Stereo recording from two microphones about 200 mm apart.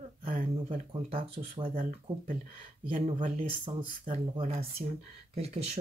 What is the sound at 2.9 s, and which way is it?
Speech, 35° right (ahead or behind).